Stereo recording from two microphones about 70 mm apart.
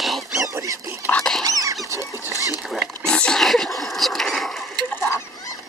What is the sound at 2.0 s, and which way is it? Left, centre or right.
Chicken, left.